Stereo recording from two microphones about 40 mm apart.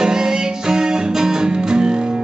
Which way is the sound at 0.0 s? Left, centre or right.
Centre.